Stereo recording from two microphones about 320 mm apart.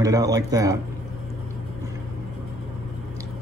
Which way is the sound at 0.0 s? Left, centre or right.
Centre.